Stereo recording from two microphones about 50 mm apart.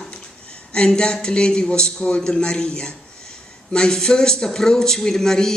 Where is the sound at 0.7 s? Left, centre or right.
Centre.